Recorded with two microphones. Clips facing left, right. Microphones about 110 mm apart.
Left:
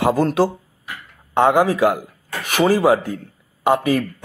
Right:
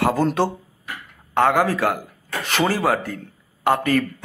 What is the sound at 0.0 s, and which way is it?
A man's voice, 10° left (ahead or behind).